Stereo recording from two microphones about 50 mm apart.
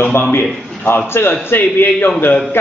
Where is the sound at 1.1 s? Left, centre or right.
Left.